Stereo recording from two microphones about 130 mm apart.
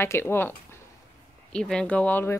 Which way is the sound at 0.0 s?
20° left (ahead or behind).